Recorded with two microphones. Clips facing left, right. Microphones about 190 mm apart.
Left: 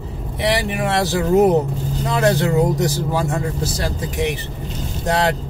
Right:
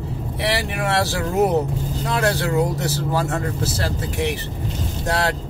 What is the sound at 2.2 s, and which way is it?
Speech, 20° left (ahead or behind).